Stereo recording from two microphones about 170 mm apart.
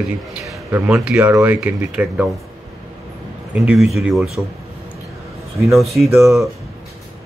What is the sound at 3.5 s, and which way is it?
Speech, 5° right (ahead or behind).